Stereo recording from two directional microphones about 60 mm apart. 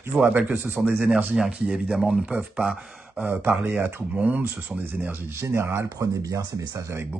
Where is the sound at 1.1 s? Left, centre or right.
Centre.